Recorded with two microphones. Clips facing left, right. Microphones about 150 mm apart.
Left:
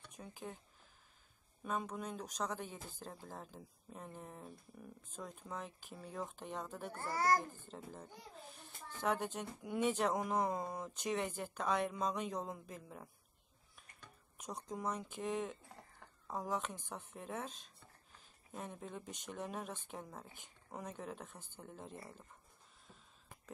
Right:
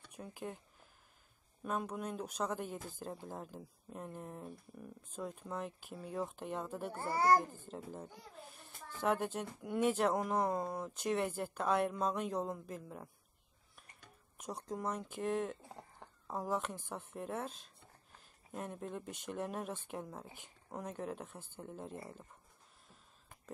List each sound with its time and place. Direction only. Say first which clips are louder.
0.1 s speech: right 4 dB; 5° right (ahead or behind)
1.6 s a child's voice: right 2 dB; 5° right (ahead or behind)
7.0 s a child's voice: right 4 dB; 20° right (ahead or behind)
7.6 s a child's voice: right 4 dB; 5° right (ahead or behind)
14.4 s a child's voice: right 2 dB; 5° right (ahead or behind)
15.6 s a sound: right 5 dB; 20° right (ahead or behind)
16.3 s a child's voice: right 2 dB; 5° right (ahead or behind)